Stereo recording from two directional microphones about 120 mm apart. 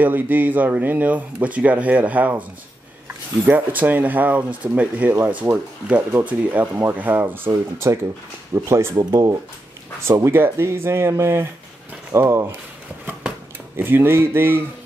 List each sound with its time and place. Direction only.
0.0 s speech: 15° right (ahead or behind)
3.4 s speech: 15° right (ahead or behind)
13.7 s speech: 20° right (ahead or behind)